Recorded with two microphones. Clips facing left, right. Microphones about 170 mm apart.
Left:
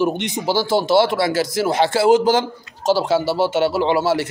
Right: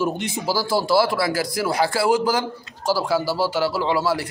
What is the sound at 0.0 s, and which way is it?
Speech, 20° left (ahead or behind).